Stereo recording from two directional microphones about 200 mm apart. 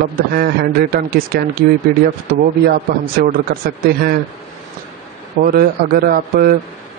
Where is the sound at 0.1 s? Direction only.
50° right (ahead or behind).